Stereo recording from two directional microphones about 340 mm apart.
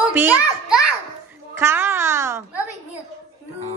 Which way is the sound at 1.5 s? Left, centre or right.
Centre.